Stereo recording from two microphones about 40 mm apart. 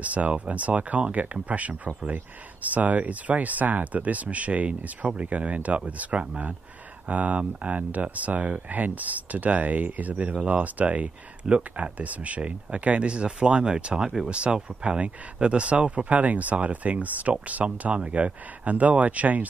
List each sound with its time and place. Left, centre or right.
0.0 s speech: right
11.4 s speech: right